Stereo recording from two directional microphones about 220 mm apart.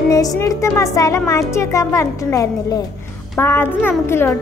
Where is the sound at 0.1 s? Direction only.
15° left (ahead or behind).